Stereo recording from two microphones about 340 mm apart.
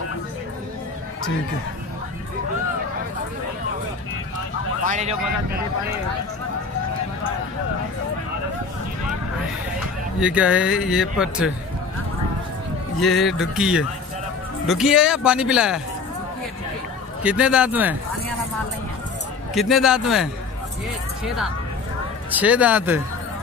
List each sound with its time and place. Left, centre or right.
4.8 s speech: right
10.2 s speech: centre
13.0 s speech: centre
17.2 s speech: centre
19.5 s speech: centre
22.3 s speech: centre